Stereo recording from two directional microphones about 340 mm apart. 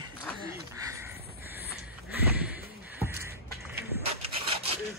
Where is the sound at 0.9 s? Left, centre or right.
Centre.